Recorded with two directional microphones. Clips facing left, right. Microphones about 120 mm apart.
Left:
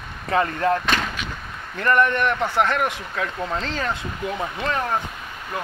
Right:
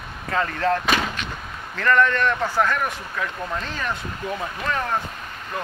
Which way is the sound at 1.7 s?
20° left (ahead or behind).